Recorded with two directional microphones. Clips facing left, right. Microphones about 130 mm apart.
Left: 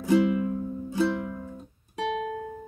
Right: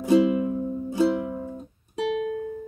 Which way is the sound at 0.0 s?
20° right (ahead or behind).